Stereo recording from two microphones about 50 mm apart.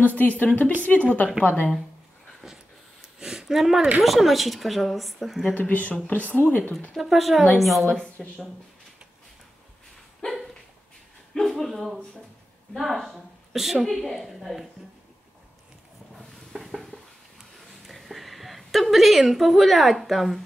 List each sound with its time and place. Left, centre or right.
0.0 s a woman's voice: left
2.4 s a sound: centre
4.0 s a woman's voice: centre
5.5 s a woman's voice: left
7.0 s a woman's voice: centre
8.0 s speech: centre
10.2 s dog: centre
11.3 s a woman's voice: centre
16.5 s a sound: centre
17.8 s a woman's voice: centre